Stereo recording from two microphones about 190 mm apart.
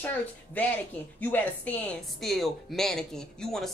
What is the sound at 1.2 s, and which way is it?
A woman's voice, 10° left (ahead or behind).